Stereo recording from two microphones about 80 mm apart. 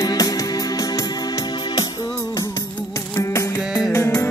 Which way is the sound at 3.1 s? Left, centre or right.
Left.